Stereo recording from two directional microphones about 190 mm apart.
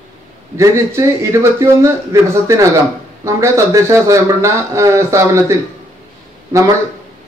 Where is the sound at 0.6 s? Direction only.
15° right (ahead or behind).